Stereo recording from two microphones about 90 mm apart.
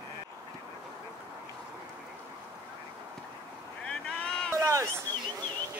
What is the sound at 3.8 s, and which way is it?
Boat, 15° left (ahead or behind).